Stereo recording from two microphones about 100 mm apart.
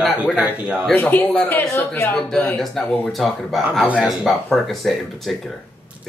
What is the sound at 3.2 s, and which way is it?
A man's voice, centre (ahead or behind).